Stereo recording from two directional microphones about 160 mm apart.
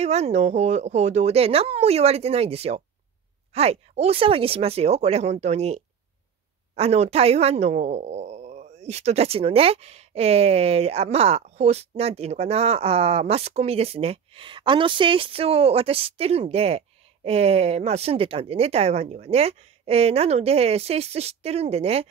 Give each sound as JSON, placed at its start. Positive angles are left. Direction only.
{"t": 0.0, "sound": "speech", "side_deg": -40}